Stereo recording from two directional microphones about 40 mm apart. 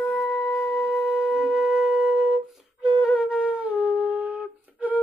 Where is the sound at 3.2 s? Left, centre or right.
Right.